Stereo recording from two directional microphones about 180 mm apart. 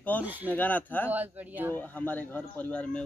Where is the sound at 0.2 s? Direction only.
10° right (ahead or behind).